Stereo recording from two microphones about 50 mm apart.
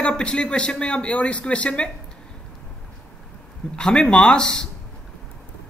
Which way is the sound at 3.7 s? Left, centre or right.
Centre.